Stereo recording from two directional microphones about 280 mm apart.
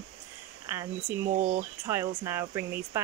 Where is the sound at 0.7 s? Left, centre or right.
Centre.